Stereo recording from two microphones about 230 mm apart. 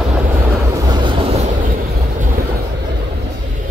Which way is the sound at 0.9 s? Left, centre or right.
Right.